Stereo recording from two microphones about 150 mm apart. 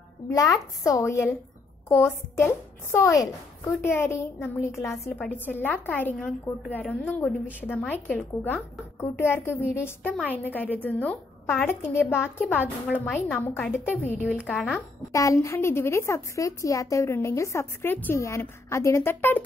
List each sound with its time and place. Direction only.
0.3 s a woman's voice: 20° left (ahead or behind)
5.1 s speech: centre (ahead or behind)
5.4 s a woman's voice: 10° left (ahead or behind)
15.1 s a woman's voice: 20° left (ahead or behind)